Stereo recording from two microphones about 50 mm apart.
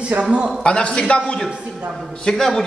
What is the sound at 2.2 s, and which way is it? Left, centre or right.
Speech, centre.